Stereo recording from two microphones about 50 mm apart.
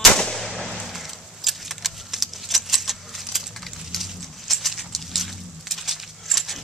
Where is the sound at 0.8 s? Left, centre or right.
Centre.